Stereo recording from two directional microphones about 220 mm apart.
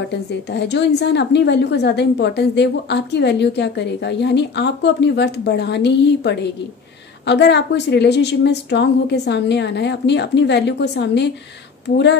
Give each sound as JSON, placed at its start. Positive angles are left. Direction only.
{"t": 0.1, "sound": "a woman's voice", "side_deg": 50}